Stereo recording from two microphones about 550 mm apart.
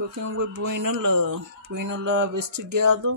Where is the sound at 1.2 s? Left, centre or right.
Right.